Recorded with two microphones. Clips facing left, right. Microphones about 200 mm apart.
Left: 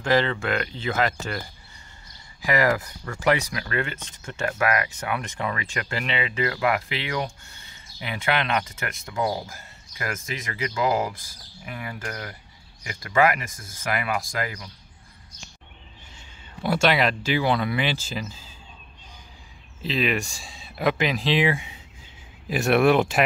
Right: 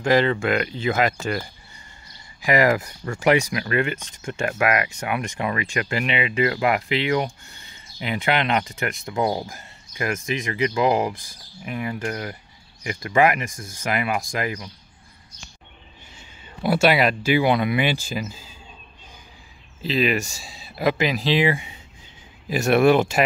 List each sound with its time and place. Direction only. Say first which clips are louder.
0.0 s speech: right 3 dB; 15° right (ahead or behind)
2.4 s speech: right 3 dB; 15° right (ahead or behind)
16.6 s speech: right 3 dB; 10° right (ahead or behind)
19.8 s speech: right 3 dB; centre (ahead or behind)